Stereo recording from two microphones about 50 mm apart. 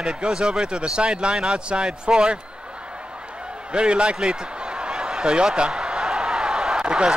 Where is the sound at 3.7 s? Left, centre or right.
Right.